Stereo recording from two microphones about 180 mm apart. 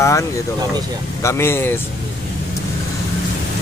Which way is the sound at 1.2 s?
15° left (ahead or behind).